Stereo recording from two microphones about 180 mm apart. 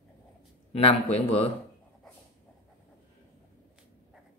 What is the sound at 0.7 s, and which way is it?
Speech, 30° left (ahead or behind).